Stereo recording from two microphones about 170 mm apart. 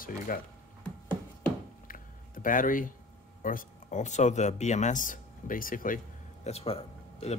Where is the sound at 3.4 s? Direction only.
50° left (ahead or behind).